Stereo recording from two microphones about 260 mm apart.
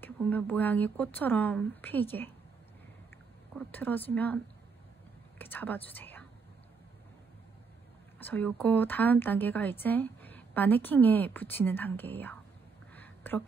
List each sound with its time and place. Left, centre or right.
0.0 s a woman's voice: centre
3.5 s a woman's voice: centre
5.4 s a woman's voice: centre
8.2 s a woman's voice: centre
12.9 s a sound: centre